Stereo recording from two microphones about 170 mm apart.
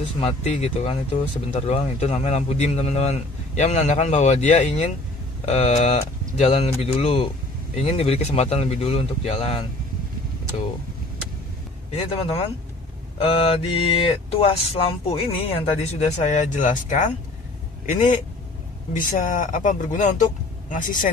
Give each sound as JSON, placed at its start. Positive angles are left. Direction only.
{"t": 0.2, "sound": "speech", "side_deg": 40}
{"t": 11.9, "sound": "speech", "side_deg": 35}
{"t": 18.9, "sound": "speech", "side_deg": 50}